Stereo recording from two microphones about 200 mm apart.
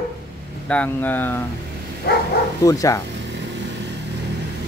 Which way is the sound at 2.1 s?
50° left (ahead or behind).